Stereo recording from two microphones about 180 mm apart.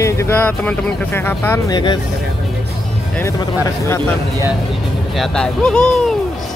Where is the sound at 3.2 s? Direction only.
15° left (ahead or behind).